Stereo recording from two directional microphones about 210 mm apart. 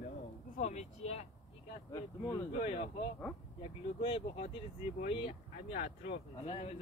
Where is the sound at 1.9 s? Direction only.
15° left (ahead or behind).